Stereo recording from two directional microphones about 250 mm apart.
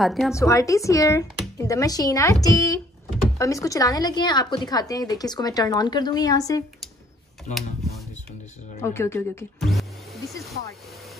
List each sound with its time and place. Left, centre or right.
0.0 s a woman's voice: centre
0.3 s a woman's voice: centre
7.5 s speech: left
8.8 s a woman's voice: centre